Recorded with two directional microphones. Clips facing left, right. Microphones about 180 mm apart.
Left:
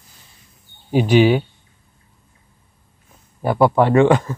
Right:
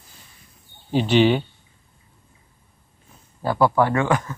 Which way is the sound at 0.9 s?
10° left (ahead or behind).